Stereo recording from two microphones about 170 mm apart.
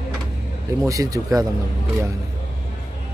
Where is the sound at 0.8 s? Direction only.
20° right (ahead or behind).